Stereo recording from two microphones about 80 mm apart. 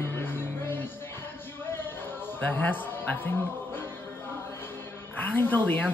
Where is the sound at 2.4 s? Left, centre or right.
Left.